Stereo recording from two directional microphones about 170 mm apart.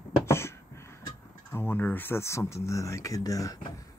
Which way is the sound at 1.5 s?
10° left (ahead or behind).